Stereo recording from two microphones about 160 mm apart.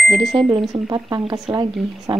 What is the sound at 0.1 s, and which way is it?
Speech, centre (ahead or behind).